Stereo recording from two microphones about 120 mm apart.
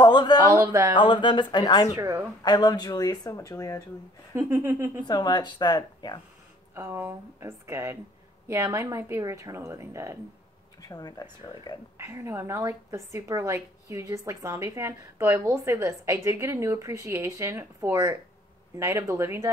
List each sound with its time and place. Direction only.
0.0 s a sound: 40° left (ahead or behind)
0.7 s a woman's voice: 25° right (ahead or behind)
0.9 s speech: 40° left (ahead or behind)
2.0 s a woman's voice: 25° right (ahead or behind)
2.4 s speech: 35° left (ahead or behind)
4.3 s speech: 20° right (ahead or behind)
5.0 s speech: 35° left (ahead or behind)
6.7 s a woman's voice: 20° right (ahead or behind)
10.8 s speech: 35° left (ahead or behind)
12.0 s a woman's voice: 20° right (ahead or behind)